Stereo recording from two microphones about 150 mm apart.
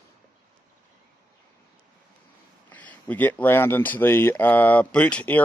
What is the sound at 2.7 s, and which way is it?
Speech, 10° left (ahead or behind).